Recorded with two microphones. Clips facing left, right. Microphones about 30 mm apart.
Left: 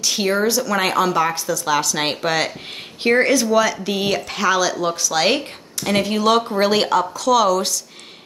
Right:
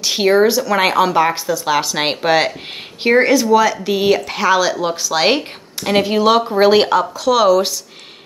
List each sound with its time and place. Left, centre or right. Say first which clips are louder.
0.0 s speech: right 6 dB; right